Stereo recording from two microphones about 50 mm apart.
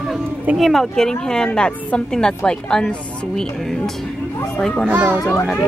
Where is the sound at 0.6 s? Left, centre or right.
Centre.